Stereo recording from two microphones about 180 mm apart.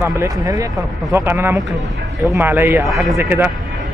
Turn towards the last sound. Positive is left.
turn(degrees=-10)  # may be behind; listen again after turning